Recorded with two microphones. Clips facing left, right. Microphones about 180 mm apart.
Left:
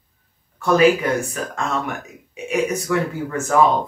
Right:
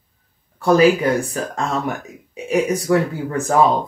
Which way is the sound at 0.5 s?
35° right (ahead or behind).